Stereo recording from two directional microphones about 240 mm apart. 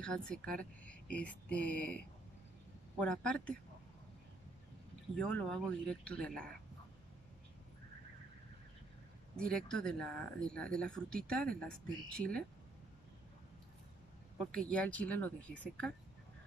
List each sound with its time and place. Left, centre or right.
0.0 s speech: centre
5.1 s speech: centre
9.4 s speech: centre
14.4 s speech: centre